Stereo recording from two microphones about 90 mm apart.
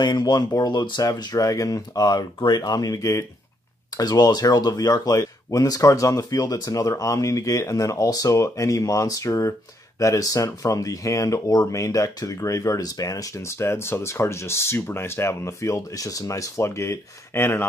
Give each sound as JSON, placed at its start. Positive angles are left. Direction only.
{"t": 0.0, "sound": "speech", "side_deg": 50}